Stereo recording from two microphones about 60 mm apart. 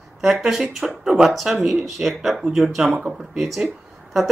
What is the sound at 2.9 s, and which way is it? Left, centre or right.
Speech, right.